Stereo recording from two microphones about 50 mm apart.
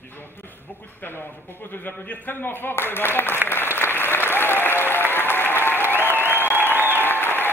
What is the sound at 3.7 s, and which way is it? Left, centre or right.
Applause, left.